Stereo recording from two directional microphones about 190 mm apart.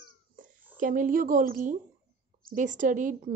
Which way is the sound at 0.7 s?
45° right (ahead or behind).